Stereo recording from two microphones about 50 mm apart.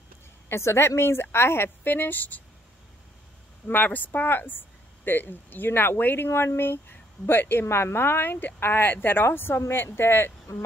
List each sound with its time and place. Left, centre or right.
0.5 s speech: left
1.9 s speech: left
3.6 s speech: left
9.6 s speech: left